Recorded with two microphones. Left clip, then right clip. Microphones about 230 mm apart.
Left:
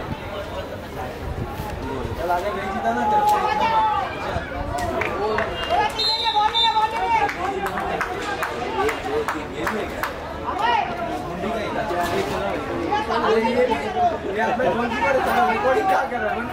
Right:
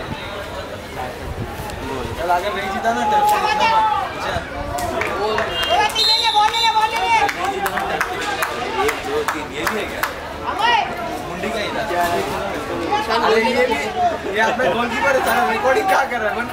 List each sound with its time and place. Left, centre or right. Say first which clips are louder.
2.2 s speech: right 4 dB; centre
3.3 s a sound: right 3 dB; centre
5.2 s run: right 4 dB; centre
10.6 s children playing: right 4 dB; centre
11.4 s chatter: right 3 dB; centre
15.9 s speech: right 3 dB; centre